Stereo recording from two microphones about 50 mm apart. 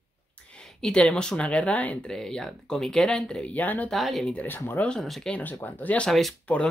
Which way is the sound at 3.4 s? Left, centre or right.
Left.